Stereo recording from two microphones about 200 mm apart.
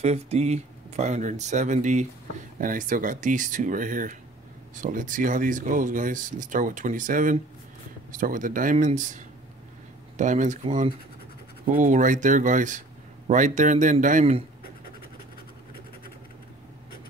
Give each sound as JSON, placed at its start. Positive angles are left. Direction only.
{"t": 0.0, "sound": "speech", "side_deg": -30}